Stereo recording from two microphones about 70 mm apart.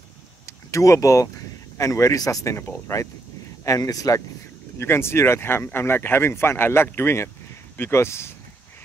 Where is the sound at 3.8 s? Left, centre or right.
Left.